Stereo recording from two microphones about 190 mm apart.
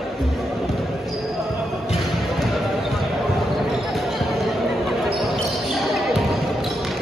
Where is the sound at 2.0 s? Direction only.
Centre (ahead or behind).